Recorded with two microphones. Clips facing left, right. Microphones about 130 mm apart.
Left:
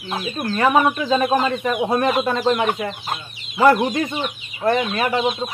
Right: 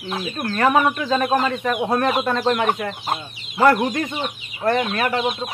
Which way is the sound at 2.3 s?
10° left (ahead or behind).